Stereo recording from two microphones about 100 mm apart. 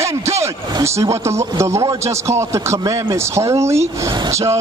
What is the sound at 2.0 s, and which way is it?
Speech, 30° right (ahead or behind).